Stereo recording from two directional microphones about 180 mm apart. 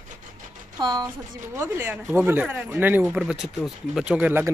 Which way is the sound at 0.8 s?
25° right (ahead or behind).